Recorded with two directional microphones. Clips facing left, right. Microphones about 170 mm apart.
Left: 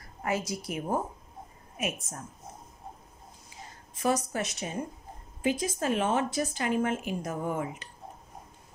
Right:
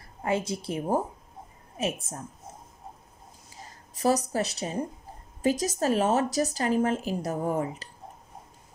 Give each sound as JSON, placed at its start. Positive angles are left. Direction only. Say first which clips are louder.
{"t": 0.0, "sound": "a woman's voice", "louder": "right 3 dB", "side_deg": -25}
{"t": 3.9, "sound": "speech", "louder": "right 3 dB", "side_deg": -35}